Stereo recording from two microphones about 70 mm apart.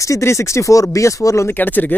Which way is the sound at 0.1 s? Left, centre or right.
Left.